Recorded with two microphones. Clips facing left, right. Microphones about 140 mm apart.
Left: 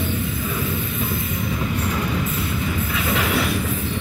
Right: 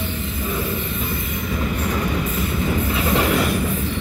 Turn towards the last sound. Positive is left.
turn(degrees=-40)  # may be behind; listen again after turning